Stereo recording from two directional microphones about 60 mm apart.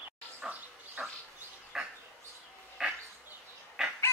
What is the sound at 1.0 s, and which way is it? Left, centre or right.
Dog, right.